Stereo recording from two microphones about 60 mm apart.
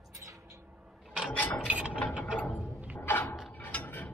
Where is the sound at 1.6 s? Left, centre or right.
Centre.